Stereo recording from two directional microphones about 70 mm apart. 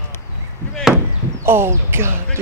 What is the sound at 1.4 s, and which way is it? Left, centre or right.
Speech, right.